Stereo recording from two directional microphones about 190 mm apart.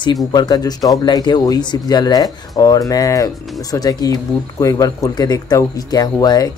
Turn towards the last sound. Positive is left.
turn(degrees=20)  # may be behind; listen again after turning